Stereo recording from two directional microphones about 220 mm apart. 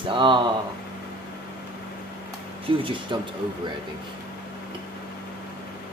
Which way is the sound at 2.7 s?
25° right (ahead or behind).